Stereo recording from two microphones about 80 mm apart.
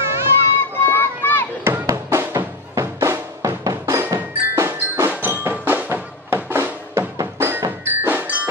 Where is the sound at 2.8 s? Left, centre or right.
Right.